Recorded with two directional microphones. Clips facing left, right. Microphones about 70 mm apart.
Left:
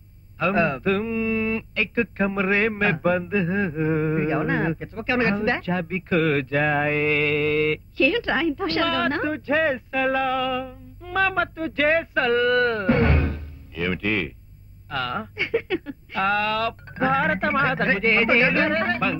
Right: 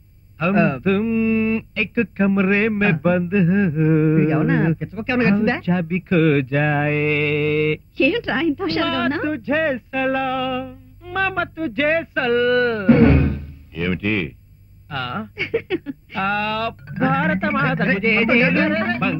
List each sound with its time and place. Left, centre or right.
0.4 s mantra: centre